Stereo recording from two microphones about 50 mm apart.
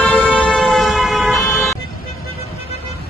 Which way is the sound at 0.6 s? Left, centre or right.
Centre.